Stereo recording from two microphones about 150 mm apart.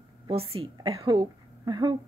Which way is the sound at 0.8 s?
25° right (ahead or behind).